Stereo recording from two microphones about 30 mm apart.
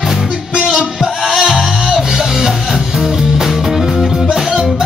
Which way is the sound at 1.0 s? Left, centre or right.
Centre.